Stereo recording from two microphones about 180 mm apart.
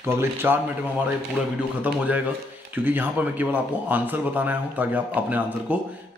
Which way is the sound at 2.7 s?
10° right (ahead or behind).